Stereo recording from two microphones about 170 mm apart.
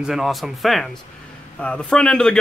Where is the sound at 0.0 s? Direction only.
5° right (ahead or behind).